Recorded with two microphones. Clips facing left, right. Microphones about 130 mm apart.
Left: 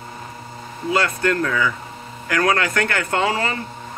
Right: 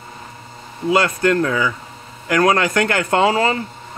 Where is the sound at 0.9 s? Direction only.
20° right (ahead or behind).